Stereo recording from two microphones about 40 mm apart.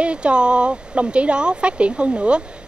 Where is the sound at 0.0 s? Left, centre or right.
Right.